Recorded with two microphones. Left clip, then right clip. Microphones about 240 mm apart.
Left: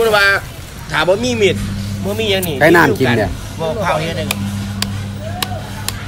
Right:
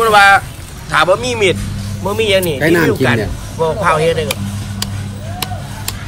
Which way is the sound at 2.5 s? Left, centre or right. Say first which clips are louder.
Left 3 dB; left.